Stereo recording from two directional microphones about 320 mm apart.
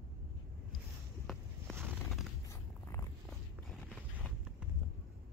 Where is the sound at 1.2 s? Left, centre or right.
Centre.